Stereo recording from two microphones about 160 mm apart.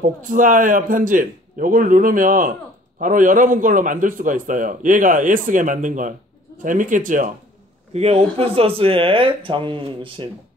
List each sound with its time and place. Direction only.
0.0 s a man's voice: 55° right (ahead or behind)
7.9 s speech: 40° right (ahead or behind)